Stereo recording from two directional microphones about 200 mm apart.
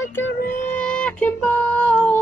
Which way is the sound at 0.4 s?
45° left (ahead or behind).